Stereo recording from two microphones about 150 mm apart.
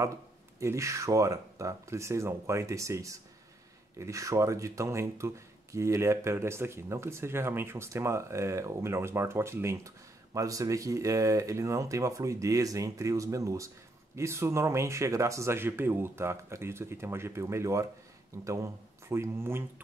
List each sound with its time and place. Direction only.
0.6 s speech: 20° right (ahead or behind)